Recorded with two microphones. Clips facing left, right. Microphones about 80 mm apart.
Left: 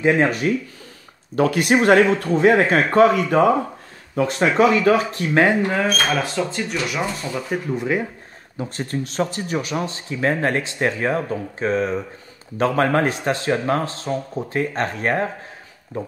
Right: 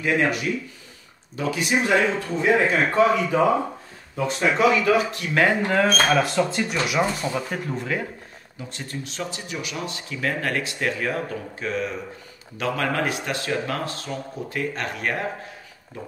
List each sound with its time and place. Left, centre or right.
0.0 s speech: left
1.3 s speech: left
5.3 s speech: left
6.0 s speech: centre
7.3 s speech: centre
8.5 s speech: left